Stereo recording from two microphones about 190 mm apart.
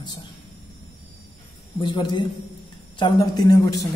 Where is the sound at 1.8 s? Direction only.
25° left (ahead or behind).